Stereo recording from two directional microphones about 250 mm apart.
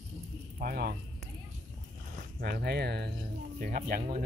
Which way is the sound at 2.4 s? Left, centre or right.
Right.